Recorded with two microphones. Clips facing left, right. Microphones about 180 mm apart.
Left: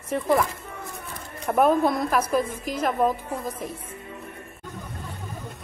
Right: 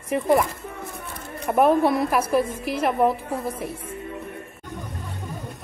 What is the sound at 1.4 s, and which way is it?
A woman's voice, 5° right (ahead or behind).